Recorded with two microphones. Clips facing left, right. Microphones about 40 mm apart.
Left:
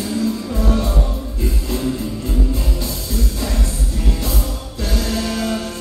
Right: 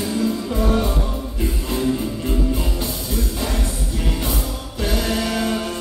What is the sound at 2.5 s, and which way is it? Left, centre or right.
Music, right.